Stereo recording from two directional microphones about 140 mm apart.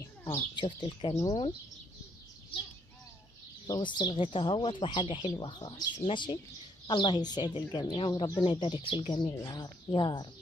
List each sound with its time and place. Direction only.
0.6 s speech: 35° left (ahead or behind)
1.1 s speech: 25° left (ahead or behind)
3.6 s speech: 30° left (ahead or behind)